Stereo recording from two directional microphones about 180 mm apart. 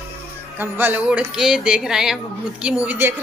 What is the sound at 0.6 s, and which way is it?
Speech, 10° right (ahead or behind).